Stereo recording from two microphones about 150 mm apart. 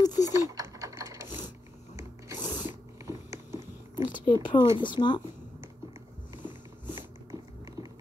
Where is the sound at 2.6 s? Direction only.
20° right (ahead or behind).